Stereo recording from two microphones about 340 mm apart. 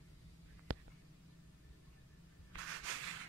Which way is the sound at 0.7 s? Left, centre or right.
Right.